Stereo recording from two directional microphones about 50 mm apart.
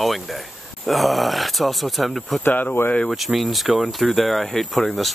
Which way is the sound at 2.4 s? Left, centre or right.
Left.